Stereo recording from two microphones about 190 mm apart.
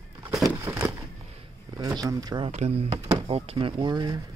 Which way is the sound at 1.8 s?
15° right (ahead or behind).